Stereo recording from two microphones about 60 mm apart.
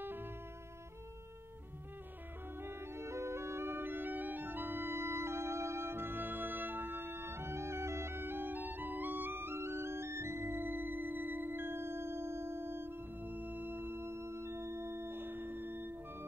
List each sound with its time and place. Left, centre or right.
0.0 s music: right
2.6 s music: right